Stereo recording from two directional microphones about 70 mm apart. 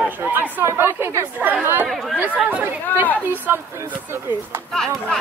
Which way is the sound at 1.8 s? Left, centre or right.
Centre.